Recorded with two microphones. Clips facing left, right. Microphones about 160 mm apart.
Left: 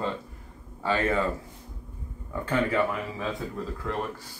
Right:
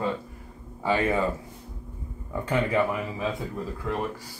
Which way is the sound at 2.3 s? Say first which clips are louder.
Right 1 dB; 20° right (ahead or behind).